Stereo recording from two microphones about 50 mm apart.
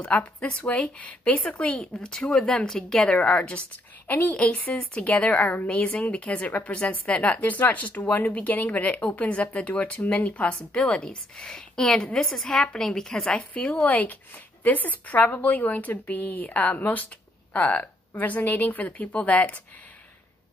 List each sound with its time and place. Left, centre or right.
0.0 s speech: left
1.8 s a woman's voice: centre
4.1 s a woman's voice: left
4.5 s a woman's voice: left
13.3 s a woman's voice: left